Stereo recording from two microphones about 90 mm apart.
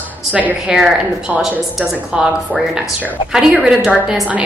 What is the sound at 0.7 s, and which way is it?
Speech, 5° right (ahead or behind).